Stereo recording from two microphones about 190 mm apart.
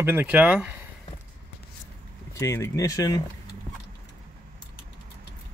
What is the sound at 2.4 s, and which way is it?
Speech, 15° left (ahead or behind).